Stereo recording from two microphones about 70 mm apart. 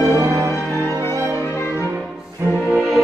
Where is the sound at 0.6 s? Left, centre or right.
Left.